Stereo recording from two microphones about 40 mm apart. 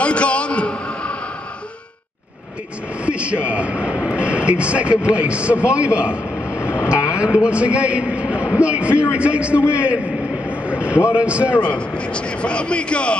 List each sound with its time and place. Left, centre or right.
0.0 s a sound: left
3.1 s vehicle: right
6.8 s a man's voice: right
10.7 s vehicle: right
11.1 s a man's voice: right
11.9 s speech: left